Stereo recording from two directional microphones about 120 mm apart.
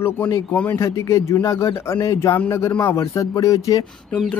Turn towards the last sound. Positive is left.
turn(degrees=30)  # may be behind; listen again after turning